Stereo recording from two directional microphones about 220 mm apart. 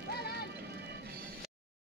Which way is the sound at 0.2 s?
45° left (ahead or behind).